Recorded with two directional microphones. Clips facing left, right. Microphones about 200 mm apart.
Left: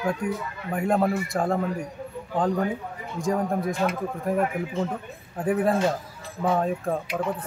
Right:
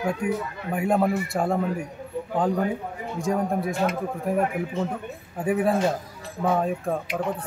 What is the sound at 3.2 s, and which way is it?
Speech, centre (ahead or behind).